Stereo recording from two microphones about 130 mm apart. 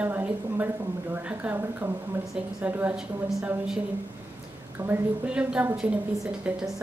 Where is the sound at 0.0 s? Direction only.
15° right (ahead or behind).